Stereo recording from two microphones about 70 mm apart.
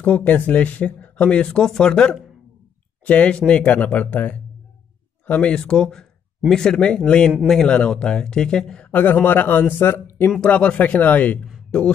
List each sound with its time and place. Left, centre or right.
0.0 s speech: left
5.5 s speech: centre
8.9 s speech: left
10.4 s speech: centre